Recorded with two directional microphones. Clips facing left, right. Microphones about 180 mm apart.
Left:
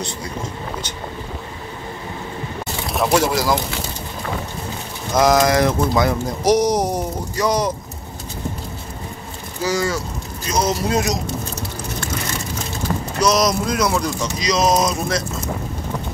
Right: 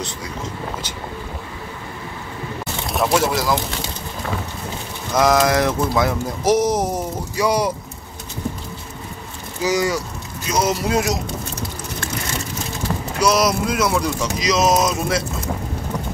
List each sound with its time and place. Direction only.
2.9 s speech: centre (ahead or behind)
5.1 s speech: centre (ahead or behind)
9.6 s speech: 15° right (ahead or behind)
13.2 s speech: 10° right (ahead or behind)